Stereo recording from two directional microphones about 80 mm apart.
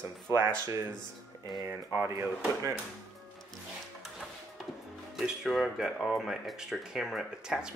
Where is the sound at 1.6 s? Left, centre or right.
Right.